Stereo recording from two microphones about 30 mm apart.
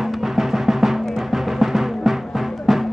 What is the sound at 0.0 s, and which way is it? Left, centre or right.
Music, centre.